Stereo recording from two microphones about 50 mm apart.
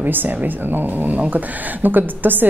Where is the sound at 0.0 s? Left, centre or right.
Right.